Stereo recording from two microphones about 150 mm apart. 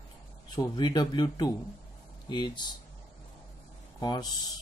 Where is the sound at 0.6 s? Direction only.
25° left (ahead or behind).